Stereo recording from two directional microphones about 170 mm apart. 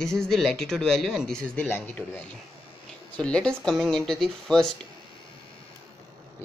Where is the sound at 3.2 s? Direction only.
5° left (ahead or behind).